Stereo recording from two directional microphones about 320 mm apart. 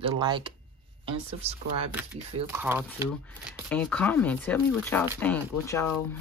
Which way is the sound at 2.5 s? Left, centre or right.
Centre.